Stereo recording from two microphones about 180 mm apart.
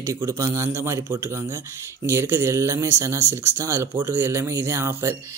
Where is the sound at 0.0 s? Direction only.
15° right (ahead or behind).